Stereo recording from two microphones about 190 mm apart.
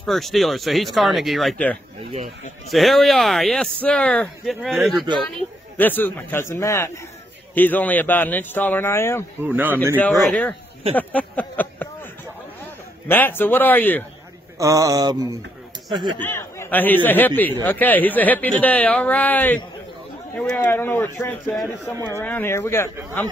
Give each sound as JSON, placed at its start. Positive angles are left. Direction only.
{"t": 0.0, "sound": "speech", "side_deg": 0}
{"t": 5.8, "sound": "speech", "side_deg": 10}
{"t": 9.4, "sound": "speech", "side_deg": -10}
{"t": 9.9, "sound": "speech", "side_deg": 5}
{"t": 11.0, "sound": "a sound", "side_deg": 10}
{"t": 13.1, "sound": "speech", "side_deg": 10}
{"t": 14.6, "sound": "speech", "side_deg": -15}
{"t": 16.2, "sound": "speech", "side_deg": 10}